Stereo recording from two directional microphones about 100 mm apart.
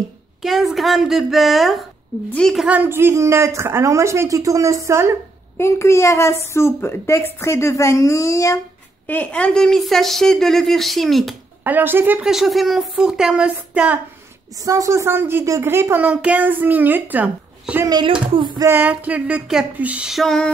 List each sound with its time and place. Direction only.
0.4 s a woman's voice: 5° right (ahead or behind)
2.7 s speech: 20° right (ahead or behind)
5.6 s a woman's voice: 25° left (ahead or behind)
9.0 s a woman's voice: 15° left (ahead or behind)
11.6 s speech: 20° right (ahead or behind)
12.3 s a woman's voice: centre (ahead or behind)
14.6 s speech: 35° right (ahead or behind); by 20.1 s 10° right (ahead or behind)
20.1 s a woman's voice: centre (ahead or behind)